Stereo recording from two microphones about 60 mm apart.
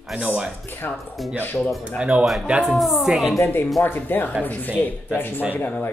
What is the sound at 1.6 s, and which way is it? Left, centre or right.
Speech, centre.